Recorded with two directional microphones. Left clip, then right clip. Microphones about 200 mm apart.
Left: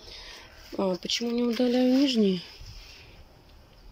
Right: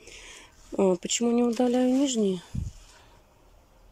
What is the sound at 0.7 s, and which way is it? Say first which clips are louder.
Speech: right 3 dB; 15° right (ahead or behind).